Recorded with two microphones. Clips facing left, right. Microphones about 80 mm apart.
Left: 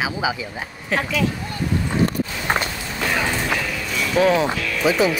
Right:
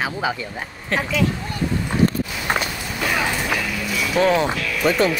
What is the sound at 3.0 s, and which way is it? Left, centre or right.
Speech, centre.